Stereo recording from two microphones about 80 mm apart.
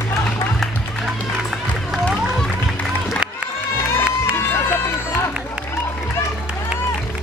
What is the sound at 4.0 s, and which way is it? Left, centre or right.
Run, left.